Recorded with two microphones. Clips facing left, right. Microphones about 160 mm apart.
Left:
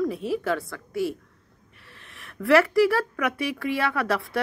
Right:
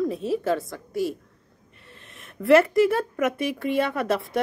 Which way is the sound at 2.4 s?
20° right (ahead or behind).